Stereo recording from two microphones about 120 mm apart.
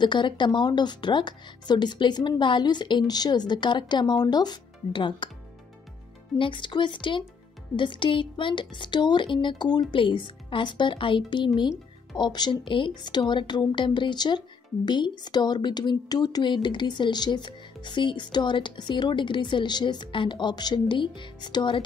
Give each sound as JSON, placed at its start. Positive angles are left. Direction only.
{"t": 0.0, "sound": "speech", "side_deg": 40}
{"t": 6.3, "sound": "speech", "side_deg": 45}